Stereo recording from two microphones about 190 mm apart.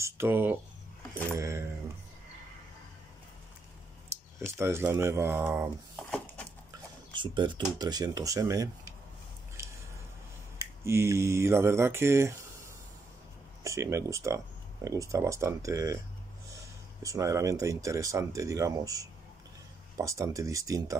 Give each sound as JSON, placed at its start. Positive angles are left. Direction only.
{"t": 0.0, "sound": "speech", "side_deg": -10}
{"t": 4.1, "sound": "speech", "side_deg": -15}
{"t": 6.0, "sound": "a sound", "side_deg": 5}
{"t": 7.2, "sound": "speech", "side_deg": -25}
{"t": 10.6, "sound": "speech", "side_deg": -15}
{"t": 13.7, "sound": "speech", "side_deg": -15}
{"t": 17.0, "sound": "speech", "side_deg": -15}